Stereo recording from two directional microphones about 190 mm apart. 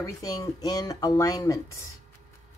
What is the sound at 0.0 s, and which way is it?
Speech, 20° left (ahead or behind).